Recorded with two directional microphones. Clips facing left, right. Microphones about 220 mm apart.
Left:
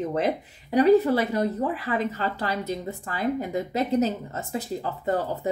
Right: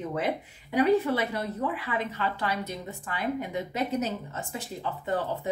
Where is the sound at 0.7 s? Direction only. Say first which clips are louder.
Left 5 dB; 40° left (ahead or behind).